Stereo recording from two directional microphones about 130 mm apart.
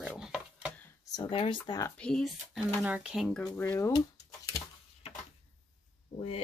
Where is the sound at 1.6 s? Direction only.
30° left (ahead or behind).